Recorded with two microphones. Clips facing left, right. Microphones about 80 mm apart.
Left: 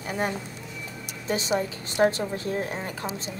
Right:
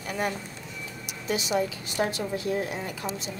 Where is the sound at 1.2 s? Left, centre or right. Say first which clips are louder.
Left 1 dB; left.